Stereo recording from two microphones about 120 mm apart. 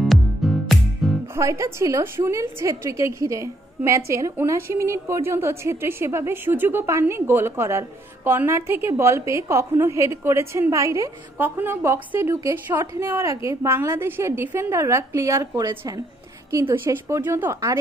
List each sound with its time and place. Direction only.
0.0 s music: centre (ahead or behind)
1.3 s a woman's voice: 25° right (ahead or behind)